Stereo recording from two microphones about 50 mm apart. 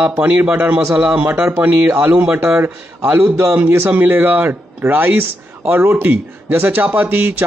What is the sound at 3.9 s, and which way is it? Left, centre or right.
A man's voice, right.